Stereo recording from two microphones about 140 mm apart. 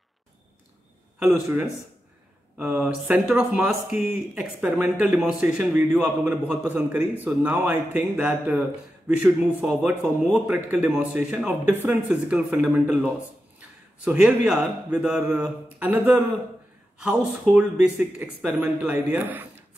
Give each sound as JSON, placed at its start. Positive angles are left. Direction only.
{"t": 1.2, "sound": "speech", "side_deg": -15}